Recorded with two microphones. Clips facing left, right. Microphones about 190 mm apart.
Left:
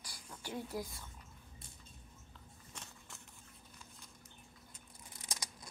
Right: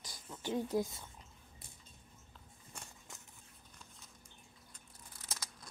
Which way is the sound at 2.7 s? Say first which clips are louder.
Right 1 dB; 10° right (ahead or behind).